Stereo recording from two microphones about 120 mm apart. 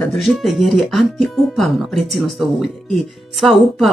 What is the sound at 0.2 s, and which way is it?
Speech, centre (ahead or behind).